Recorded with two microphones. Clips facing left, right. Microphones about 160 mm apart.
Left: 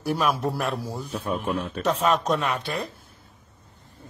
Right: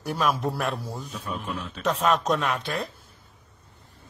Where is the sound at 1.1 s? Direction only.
55° left (ahead or behind).